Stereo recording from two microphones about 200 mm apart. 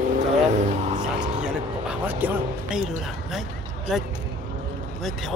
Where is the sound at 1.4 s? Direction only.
5° right (ahead or behind).